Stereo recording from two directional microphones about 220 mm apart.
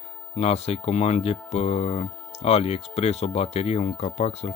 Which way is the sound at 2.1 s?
10° left (ahead or behind).